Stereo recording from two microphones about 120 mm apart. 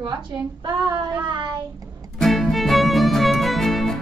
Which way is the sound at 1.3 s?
40° right (ahead or behind).